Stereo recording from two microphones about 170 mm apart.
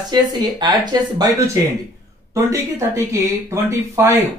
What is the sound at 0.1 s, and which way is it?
Speech, 25° right (ahead or behind).